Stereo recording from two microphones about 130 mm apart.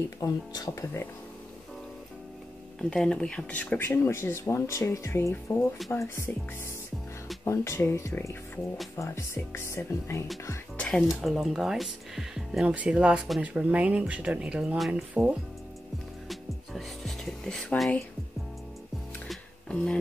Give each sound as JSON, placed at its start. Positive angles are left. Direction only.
{"t": 0.2, "sound": "speech", "side_deg": 30}
{"t": 2.8, "sound": "speech", "side_deg": 5}
{"t": 10.8, "sound": "speech", "side_deg": 5}
{"t": 16.3, "sound": "music", "side_deg": 0}
{"t": 19.2, "sound": "music", "side_deg": 5}